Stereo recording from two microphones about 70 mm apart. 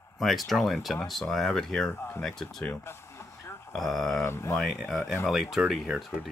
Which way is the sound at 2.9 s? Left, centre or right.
Left.